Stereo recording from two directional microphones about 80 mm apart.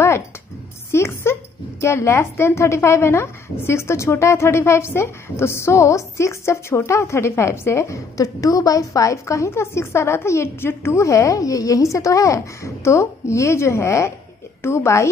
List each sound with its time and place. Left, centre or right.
0.9 s speech: left